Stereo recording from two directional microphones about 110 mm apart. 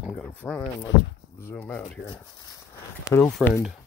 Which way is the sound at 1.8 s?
45° left (ahead or behind).